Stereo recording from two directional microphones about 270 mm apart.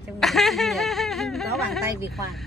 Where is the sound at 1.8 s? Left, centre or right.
Centre.